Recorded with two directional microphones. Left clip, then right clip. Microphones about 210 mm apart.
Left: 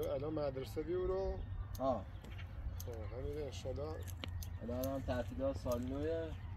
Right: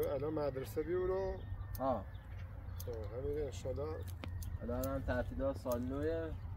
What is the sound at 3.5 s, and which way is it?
Speech, 15° right (ahead or behind).